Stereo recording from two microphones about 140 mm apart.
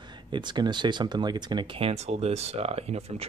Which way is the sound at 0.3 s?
30° right (ahead or behind).